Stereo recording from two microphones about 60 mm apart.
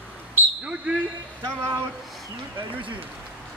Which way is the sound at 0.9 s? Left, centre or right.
Right.